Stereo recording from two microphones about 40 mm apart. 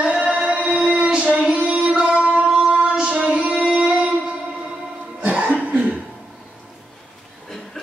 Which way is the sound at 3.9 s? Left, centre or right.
Right.